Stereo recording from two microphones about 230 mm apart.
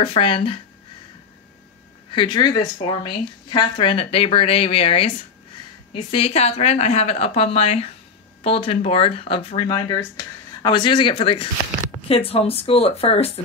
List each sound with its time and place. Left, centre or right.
0.0 s speech: left
2.0 s speech: left